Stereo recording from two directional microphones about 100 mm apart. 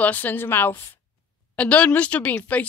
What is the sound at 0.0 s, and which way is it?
A woman's voice, 15° left (ahead or behind).